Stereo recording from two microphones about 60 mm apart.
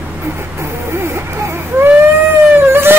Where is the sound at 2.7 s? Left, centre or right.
Right.